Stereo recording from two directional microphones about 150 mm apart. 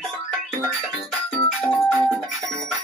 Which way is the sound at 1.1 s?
Centre (ahead or behind).